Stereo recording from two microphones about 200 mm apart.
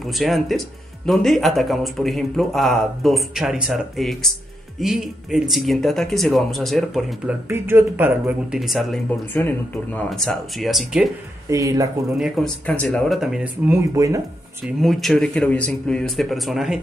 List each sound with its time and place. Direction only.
0.0 s speech: centre (ahead or behind)
7.4 s speech: 10° right (ahead or behind)
11.5 s speech: 15° right (ahead or behind)
12.2 s speech: centre (ahead or behind); by 14.2 s 15° right (ahead or behind)
14.8 s speech: centre (ahead or behind)